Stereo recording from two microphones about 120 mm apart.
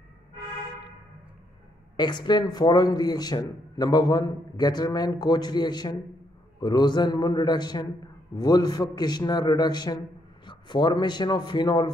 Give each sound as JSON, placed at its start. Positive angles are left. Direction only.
{"t": 2.0, "sound": "a man's voice", "side_deg": 35}